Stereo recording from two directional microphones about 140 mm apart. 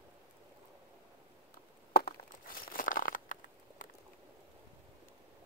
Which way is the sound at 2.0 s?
90° left.